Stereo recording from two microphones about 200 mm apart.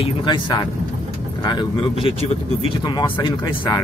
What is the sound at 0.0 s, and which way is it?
Speech, 25° left (ahead or behind).